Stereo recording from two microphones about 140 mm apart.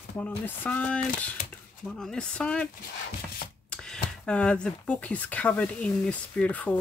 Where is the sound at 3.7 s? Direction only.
5° left (ahead or behind).